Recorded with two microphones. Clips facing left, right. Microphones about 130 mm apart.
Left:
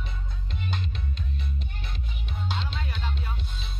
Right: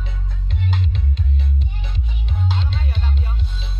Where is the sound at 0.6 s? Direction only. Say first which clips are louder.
Right 8 dB; 90° right.